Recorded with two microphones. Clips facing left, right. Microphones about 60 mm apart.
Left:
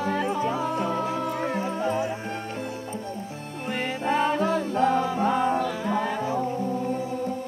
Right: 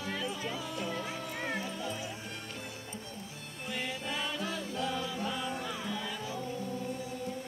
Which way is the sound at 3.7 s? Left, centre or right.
Left.